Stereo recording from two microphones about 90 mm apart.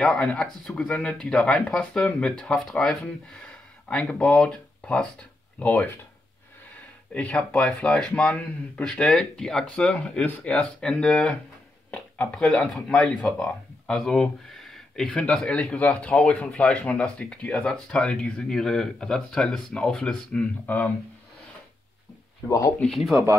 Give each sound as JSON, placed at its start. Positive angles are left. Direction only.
{"t": 0.0, "sound": "speech", "side_deg": 5}
{"t": 7.2, "sound": "speech", "side_deg": 10}
{"t": 12.4, "sound": "speech", "side_deg": 5}
{"t": 20.6, "sound": "speech", "side_deg": 20}
{"t": 22.5, "sound": "speech", "side_deg": 40}
{"t": 22.8, "sound": "speech", "side_deg": 5}